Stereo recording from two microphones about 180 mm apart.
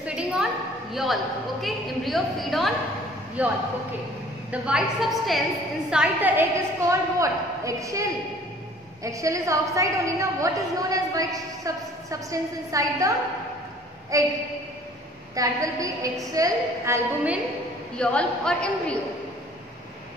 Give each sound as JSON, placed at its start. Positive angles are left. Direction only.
{"t": 0.0, "sound": "a sound", "side_deg": -5}
{"t": 0.9, "sound": "a woman's voice", "side_deg": 0}
{"t": 14.1, "sound": "a woman's voice", "side_deg": -20}
{"t": 15.3, "sound": "a woman's voice", "side_deg": -20}
{"t": 17.9, "sound": "a woman's voice", "side_deg": 5}